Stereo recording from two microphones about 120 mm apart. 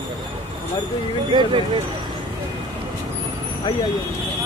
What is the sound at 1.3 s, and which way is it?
Speech, 45° right (ahead or behind).